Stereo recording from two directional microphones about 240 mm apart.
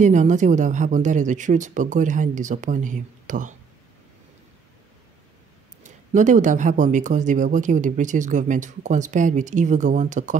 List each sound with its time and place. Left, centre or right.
0.0 s speech: right
5.9 s speech: right